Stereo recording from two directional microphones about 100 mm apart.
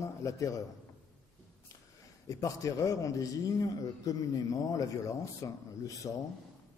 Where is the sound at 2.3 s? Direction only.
35° left (ahead or behind).